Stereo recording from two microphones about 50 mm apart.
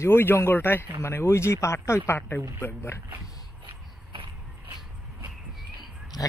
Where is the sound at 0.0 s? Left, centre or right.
Left.